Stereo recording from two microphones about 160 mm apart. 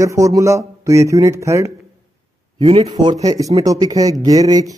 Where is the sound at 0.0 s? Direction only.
20° right (ahead or behind).